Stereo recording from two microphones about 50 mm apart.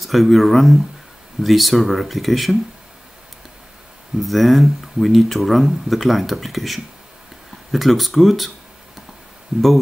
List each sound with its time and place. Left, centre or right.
0.0 s speech: centre
4.2 s speech: centre
9.5 s speech: centre